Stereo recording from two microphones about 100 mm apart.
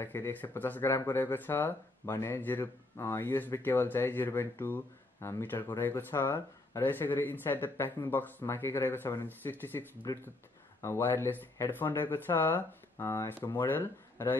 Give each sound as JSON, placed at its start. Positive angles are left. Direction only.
{"t": 0.0, "sound": "speech", "side_deg": 20}
{"t": 10.1, "sound": "speech", "side_deg": 35}